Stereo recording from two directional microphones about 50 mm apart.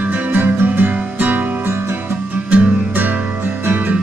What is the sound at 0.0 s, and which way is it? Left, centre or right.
Music, right.